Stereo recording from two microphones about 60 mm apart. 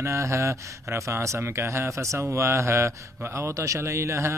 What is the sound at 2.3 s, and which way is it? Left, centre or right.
A man's voice, right.